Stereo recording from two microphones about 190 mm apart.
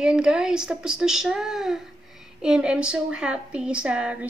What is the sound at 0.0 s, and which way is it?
Speech, 5° right (ahead or behind).